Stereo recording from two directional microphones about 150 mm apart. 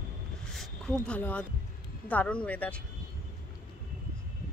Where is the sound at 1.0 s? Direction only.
10° left (ahead or behind).